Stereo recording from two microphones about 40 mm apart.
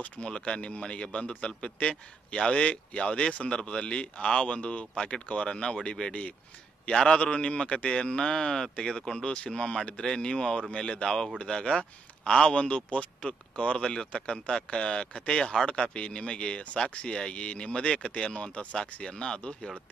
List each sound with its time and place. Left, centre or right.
0.0 s speech: left